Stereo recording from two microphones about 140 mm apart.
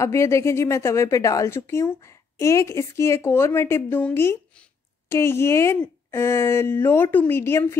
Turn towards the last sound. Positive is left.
turn(degrees=15)  # may be behind; listen again after turning